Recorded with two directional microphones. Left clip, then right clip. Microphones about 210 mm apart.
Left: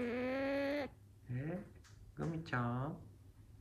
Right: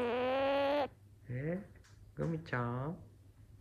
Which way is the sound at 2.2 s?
Centre (ahead or behind).